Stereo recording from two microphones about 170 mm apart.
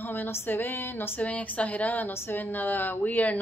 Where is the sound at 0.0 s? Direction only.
10° left (ahead or behind).